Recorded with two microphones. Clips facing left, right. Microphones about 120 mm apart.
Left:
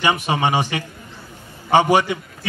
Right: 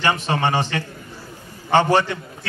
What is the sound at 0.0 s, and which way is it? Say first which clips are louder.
A man's voice: left 1 dB; 15° left (ahead or behind).